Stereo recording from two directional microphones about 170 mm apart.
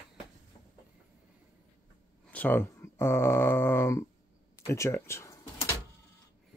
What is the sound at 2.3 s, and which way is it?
Speech, 10° left (ahead or behind).